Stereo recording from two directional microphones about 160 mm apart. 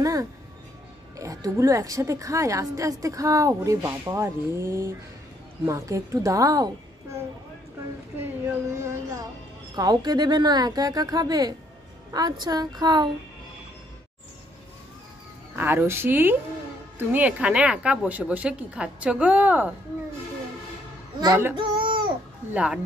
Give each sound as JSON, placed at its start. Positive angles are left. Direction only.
{"t": 0.0, "sound": "music", "side_deg": -20}
{"t": 1.1, "sound": "a woman's voice", "side_deg": -20}
{"t": 8.8, "sound": "a woman's voice", "side_deg": -20}
{"t": 15.5, "sound": "a woman's voice", "side_deg": -15}
{"t": 21.2, "sound": "a woman's voice", "side_deg": -20}
{"t": 21.5, "sound": "child singing", "side_deg": -35}
{"t": 22.5, "sound": "a woman's voice", "side_deg": -5}